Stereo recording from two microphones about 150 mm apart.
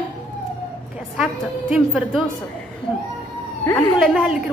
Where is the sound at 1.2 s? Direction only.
5° right (ahead or behind).